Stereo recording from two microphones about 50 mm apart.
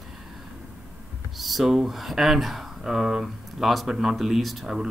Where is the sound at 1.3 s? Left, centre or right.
Centre.